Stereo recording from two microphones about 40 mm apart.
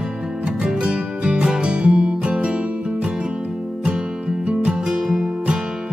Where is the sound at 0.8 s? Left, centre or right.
Right.